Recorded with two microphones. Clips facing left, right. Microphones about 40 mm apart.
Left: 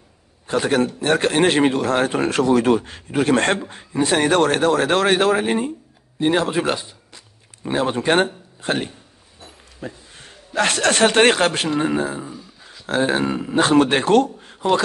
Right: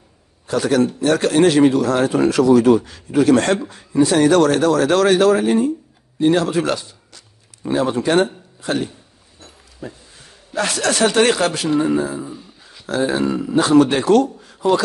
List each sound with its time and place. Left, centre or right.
0.5 s a man's voice: left